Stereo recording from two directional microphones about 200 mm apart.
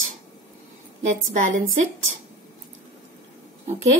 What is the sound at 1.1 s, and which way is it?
Speech, 40° right (ahead or behind).